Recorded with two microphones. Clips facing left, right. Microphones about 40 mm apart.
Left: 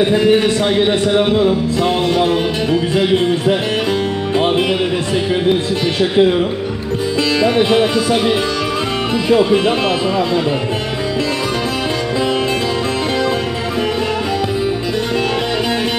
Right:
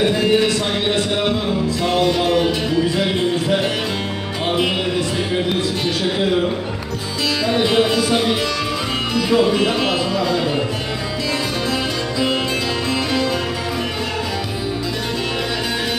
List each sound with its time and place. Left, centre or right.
1.8 s music: left
7.4 s speech: left
9.1 s speech: left